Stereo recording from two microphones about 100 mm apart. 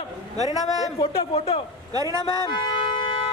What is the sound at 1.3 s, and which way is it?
Speech, 90° left.